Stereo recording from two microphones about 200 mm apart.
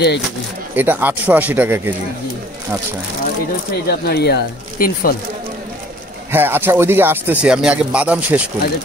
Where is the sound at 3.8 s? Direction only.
50° left (ahead or behind).